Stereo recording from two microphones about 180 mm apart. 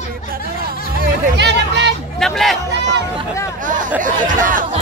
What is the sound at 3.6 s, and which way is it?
Speech, 45° right (ahead or behind).